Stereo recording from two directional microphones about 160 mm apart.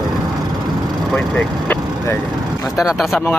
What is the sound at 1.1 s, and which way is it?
Speech, 5° left (ahead or behind).